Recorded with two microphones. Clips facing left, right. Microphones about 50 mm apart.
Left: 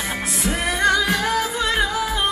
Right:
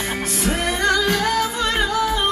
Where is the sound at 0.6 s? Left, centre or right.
Left.